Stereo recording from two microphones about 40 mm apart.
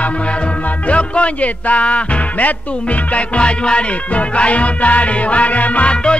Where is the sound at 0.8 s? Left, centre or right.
Left.